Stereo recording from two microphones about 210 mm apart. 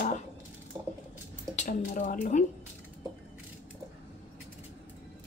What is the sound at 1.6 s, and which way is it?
Speech, 40° left (ahead or behind).